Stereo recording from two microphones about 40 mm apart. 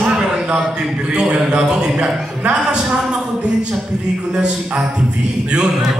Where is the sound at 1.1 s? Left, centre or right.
Right.